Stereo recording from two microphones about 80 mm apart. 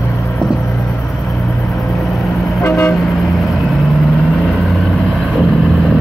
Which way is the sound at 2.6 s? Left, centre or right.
Left.